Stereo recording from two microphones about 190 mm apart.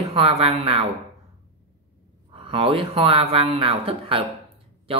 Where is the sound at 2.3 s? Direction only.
30° right (ahead or behind).